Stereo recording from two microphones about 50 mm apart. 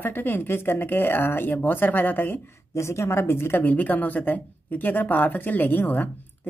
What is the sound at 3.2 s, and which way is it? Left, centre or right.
Speech, left.